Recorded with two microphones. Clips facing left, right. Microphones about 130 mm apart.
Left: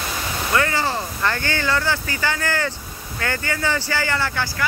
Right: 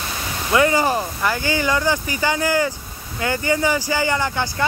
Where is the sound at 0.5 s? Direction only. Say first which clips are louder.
Right 5 dB; 15° right (ahead or behind).